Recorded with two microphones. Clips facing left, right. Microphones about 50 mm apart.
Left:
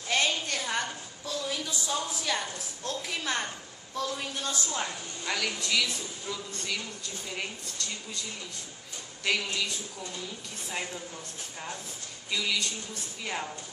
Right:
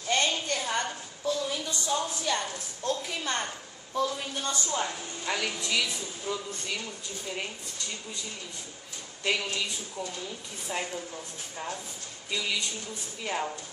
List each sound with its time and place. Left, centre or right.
0.1 s a sound: centre
1.7 s a woman's voice: centre
4.5 s a woman's voice: centre
5.3 s a woman's voice: centre
9.2 s a woman's voice: centre
10.7 s a woman's voice: centre
12.3 s a woman's voice: centre
13.2 s a woman's voice: centre